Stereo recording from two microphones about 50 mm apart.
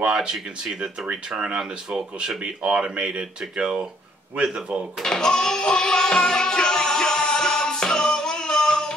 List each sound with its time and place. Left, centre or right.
0.0 s speech: centre
4.4 s speech: right
5.0 s music: centre